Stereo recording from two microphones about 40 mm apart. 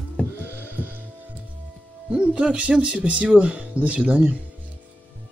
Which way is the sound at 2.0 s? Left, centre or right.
Right.